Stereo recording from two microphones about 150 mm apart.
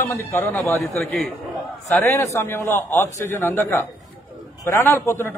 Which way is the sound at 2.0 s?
20° left (ahead or behind).